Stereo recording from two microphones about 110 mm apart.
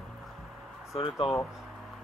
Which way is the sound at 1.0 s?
50° left (ahead or behind).